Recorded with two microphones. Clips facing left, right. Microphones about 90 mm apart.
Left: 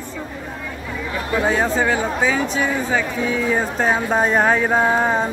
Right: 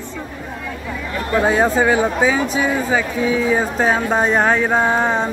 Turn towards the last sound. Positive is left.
turn(degrees=5)  # may be behind; listen again after turning